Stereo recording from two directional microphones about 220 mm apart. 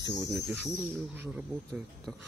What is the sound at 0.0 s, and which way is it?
Speech, 10° right (ahead or behind).